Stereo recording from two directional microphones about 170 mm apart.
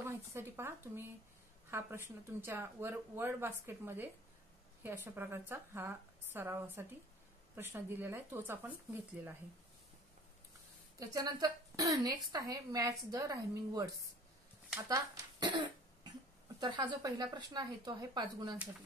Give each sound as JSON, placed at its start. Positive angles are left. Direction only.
{"t": 0.0, "sound": "a woman's voice", "side_deg": -15}
{"t": 11.0, "sound": "a woman's voice", "side_deg": -20}
{"t": 14.9, "sound": "a woman's voice", "side_deg": -20}